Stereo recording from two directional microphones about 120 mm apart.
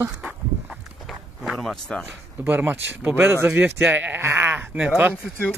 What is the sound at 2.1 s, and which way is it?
Speech, 15° right (ahead or behind).